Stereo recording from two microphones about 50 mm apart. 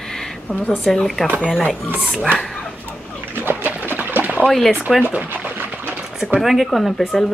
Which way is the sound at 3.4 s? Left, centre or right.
Right.